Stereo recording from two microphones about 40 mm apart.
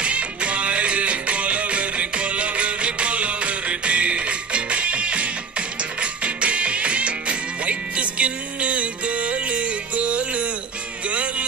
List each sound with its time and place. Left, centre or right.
0.0 s music: right